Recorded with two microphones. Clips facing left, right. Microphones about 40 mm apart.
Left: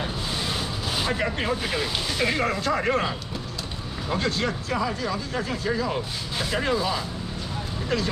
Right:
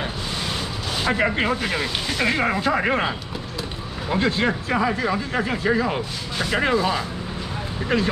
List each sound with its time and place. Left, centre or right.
1.0 s speech: right